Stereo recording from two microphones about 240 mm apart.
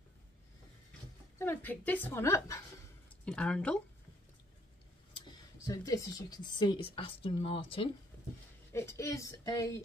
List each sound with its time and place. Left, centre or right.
1.4 s a woman's voice: centre
5.1 s speech: centre
8.7 s a woman's voice: centre